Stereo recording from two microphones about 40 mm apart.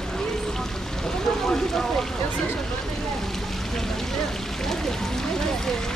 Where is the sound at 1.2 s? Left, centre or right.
Centre.